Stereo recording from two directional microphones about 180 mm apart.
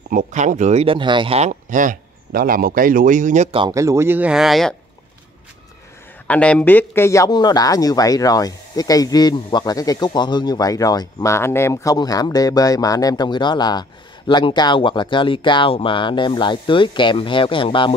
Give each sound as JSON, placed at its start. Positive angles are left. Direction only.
{"t": 0.1, "sound": "speech", "side_deg": -45}
{"t": 3.5, "sound": "speech", "side_deg": -20}
{"t": 6.2, "sound": "speech", "side_deg": 5}